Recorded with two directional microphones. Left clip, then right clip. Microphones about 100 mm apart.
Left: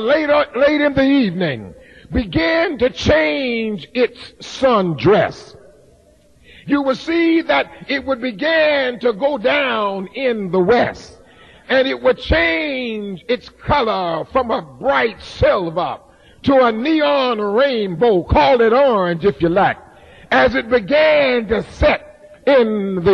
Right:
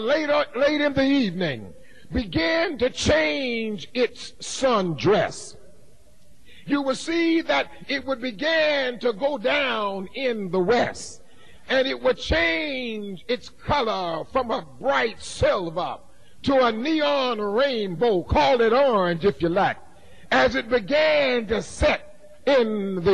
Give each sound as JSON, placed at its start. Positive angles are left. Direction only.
{"t": 0.0, "sound": "a man's voice", "side_deg": -35}
{"t": 6.7, "sound": "a man's voice", "side_deg": -40}
{"t": 21.5, "sound": "a man's voice", "side_deg": -45}